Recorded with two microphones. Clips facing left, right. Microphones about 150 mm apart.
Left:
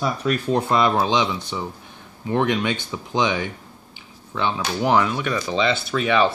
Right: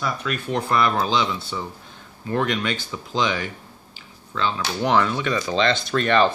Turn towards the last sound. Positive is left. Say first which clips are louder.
# even
turn(degrees=5)  # may be behind; listen again after turning